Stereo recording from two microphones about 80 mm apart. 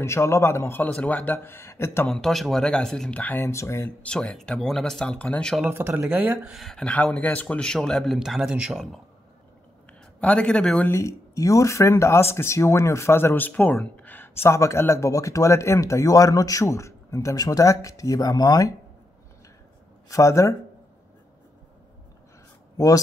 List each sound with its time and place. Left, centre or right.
0.0 s speech: left
0.8 s speech: left
2.0 s speech: centre
3.3 s speech: left
4.0 s speech: centre
5.1 s speech: centre
5.7 s speech: right
6.5 s speech: centre
7.0 s speech: centre
7.4 s a man's voice: centre
10.2 s speech: centre
10.9 s speech: left
20.1 s speech: left